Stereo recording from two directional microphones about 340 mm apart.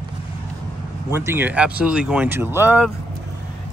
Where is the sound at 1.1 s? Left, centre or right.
Centre.